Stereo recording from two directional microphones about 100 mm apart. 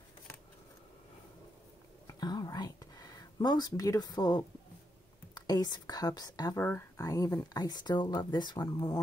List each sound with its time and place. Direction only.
2.0 s whispering: 45° left (ahead or behind)
5.3 s a woman's voice: 45° left (ahead or behind)
6.5 s speech: 25° left (ahead or behind)
7.0 s speech: 35° left (ahead or behind)